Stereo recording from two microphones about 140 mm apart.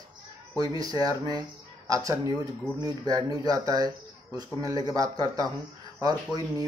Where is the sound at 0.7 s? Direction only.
25° right (ahead or behind).